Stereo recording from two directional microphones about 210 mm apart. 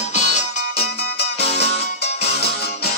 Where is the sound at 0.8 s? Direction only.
50° left (ahead or behind).